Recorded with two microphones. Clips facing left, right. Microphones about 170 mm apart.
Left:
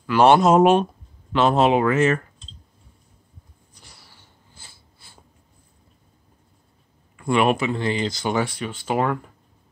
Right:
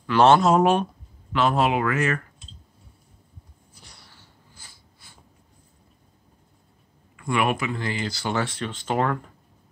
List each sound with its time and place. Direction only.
0.0 s speech: 10° left (ahead or behind); by 2.2 s 25° left (ahead or behind)
3.7 s a sound: centre (ahead or behind)
4.6 s snort: 25° left (ahead or behind)
7.2 s speech: 25° left (ahead or behind); by 9.2 s 10° left (ahead or behind)